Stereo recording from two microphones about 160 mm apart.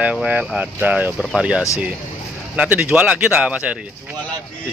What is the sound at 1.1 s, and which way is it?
Speech, centre (ahead or behind).